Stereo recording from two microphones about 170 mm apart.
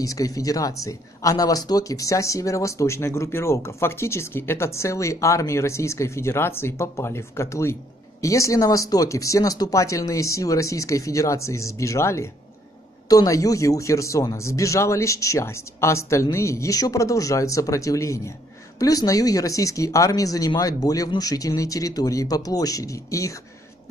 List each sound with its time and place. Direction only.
0.0 s speech: 20° left (ahead or behind)